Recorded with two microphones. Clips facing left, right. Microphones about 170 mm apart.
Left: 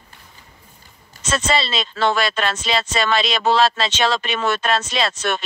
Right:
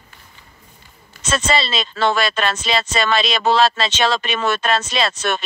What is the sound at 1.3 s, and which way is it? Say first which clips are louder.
Speech: right 1 dB; 90° right.